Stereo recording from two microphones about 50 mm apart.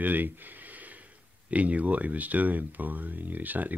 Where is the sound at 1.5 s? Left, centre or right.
Right.